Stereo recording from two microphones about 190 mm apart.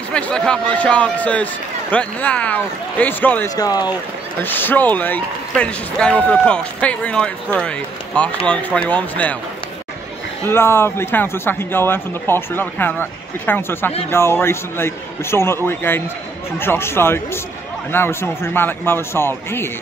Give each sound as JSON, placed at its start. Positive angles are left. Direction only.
{"t": 0.1, "sound": "speech", "side_deg": 5}
{"t": 3.5, "sound": "speech", "side_deg": 20}
{"t": 10.4, "sound": "speech", "side_deg": 10}